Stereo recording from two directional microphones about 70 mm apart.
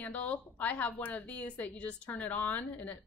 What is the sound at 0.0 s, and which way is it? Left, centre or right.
A woman's voice, left.